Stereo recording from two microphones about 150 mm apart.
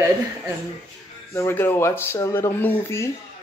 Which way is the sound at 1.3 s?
15° left (ahead or behind).